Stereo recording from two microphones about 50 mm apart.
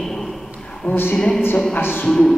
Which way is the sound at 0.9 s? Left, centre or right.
Left.